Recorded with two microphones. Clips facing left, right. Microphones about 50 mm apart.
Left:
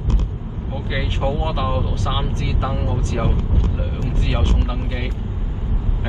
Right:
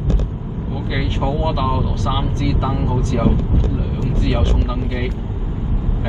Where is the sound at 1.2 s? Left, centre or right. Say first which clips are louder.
Right 2 dB; left.